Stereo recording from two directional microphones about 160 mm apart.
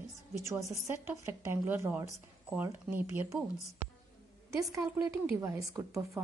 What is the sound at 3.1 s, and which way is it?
Speech, 15° right (ahead or behind).